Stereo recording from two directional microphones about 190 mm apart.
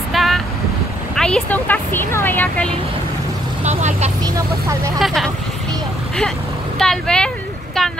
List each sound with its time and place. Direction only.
0.1 s vehicle: centre (ahead or behind)
1.1 s speech: 5° left (ahead or behind)
3.6 s speech: 35° right (ahead or behind)
4.2 s speech: 15° right (ahead or behind)
4.9 s speech: centre (ahead or behind)
6.8 s speech: 5° left (ahead or behind)